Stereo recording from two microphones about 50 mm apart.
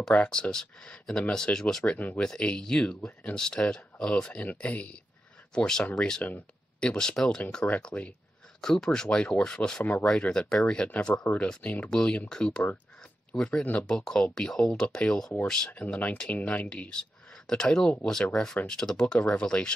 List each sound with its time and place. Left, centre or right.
0.3 s speech: centre
4.6 s speech: left
5.5 s speech: centre
6.2 s speech: left
6.9 s speech: centre
7.6 s speech: left
8.5 s speech: centre
11.6 s speech: left
11.9 s speech: centre
15.7 s speech: left
16.6 s speech: left